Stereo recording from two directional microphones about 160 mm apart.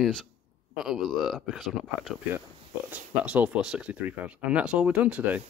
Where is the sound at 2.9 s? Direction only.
10° right (ahead or behind).